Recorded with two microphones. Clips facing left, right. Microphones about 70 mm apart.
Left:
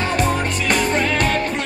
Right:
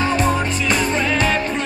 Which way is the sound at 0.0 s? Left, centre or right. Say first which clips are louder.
Right 1 dB; left.